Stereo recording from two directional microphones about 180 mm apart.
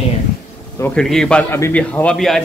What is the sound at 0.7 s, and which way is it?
A man's voice, 10° left (ahead or behind).